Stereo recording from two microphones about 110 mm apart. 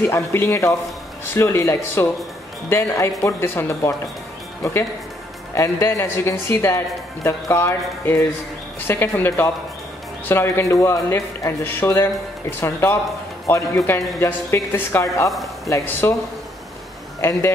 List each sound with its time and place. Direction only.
0.0 s a man's voice: 20° left (ahead or behind)
5.5 s a man's voice: 25° left (ahead or behind)
15.2 s speech: centre (ahead or behind)
15.7 s a man's voice: 20° left (ahead or behind)
17.2 s speech: 25° left (ahead or behind)